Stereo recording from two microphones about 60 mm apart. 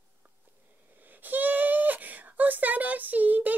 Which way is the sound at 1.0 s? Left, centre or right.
Right.